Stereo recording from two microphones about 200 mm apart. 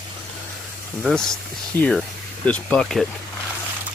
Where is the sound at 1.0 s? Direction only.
Centre (ahead or behind).